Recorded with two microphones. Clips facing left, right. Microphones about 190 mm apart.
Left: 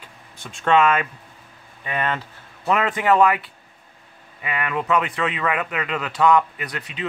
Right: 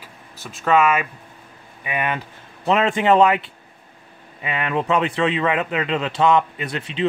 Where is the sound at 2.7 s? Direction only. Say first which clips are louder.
Right 3 dB; 25° right (ahead or behind).